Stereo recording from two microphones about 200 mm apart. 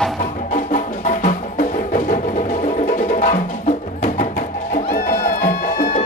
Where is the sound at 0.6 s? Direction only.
40° left (ahead or behind).